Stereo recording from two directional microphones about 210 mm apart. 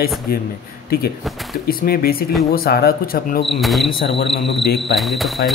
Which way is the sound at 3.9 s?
25° left (ahead or behind).